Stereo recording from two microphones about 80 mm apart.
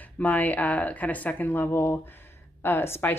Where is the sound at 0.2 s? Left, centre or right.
Centre.